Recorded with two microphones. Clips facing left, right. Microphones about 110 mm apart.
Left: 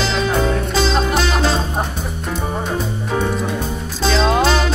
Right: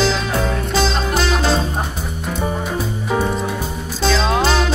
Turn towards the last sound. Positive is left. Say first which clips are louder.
# left 2 dB
turn(degrees=0)  # may be behind; listen again after turning